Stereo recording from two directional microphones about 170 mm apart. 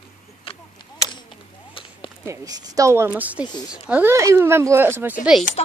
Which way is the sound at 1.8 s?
30° left (ahead or behind).